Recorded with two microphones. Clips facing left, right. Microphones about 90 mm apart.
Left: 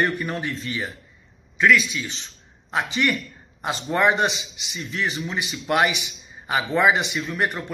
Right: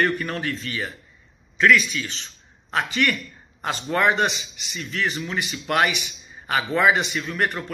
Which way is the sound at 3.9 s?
20° left (ahead or behind).